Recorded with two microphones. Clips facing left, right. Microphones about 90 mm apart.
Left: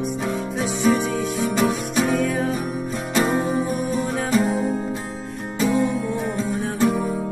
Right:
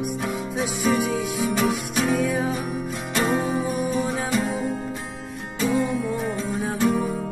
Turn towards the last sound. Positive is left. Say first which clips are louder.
# left 2 dB
turn(degrees=0)  # may be behind; listen again after turning